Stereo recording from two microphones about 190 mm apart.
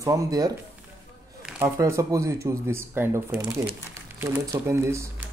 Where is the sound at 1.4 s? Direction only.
5° right (ahead or behind).